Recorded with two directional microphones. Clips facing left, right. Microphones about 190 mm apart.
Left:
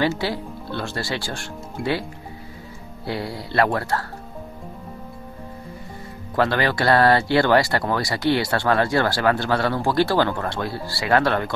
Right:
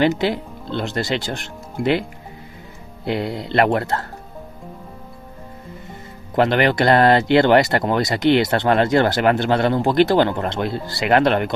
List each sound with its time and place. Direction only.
0.0 s speech: 20° right (ahead or behind)
3.1 s speech: 20° right (ahead or behind)
6.3 s speech: 20° right (ahead or behind)